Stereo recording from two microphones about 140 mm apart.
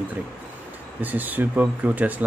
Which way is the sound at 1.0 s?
10° right (ahead or behind).